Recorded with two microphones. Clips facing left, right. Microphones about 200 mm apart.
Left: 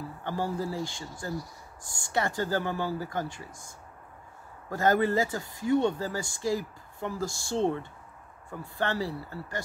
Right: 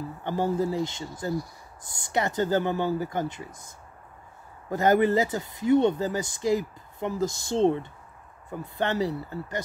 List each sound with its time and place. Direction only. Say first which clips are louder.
0.2 s speech: right 6 dB; 20° right (ahead or behind)